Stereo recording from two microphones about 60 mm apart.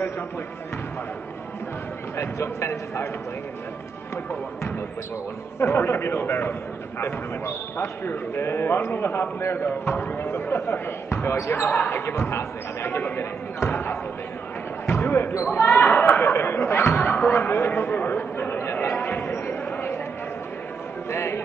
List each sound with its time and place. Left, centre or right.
2.1 s a man's voice: left
5.6 s a man's voice: left
11.3 s speech: left
11.6 s speech: left
13.0 s a sound: left
15.0 s basketball bounce: left
15.5 s chatter: left
19.0 s basketball bounce: left
21.1 s a sound: left